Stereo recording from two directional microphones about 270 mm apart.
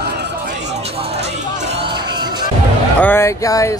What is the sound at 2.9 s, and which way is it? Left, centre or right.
Speech, centre.